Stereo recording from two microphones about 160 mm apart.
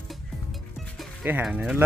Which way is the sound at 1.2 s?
10° right (ahead or behind).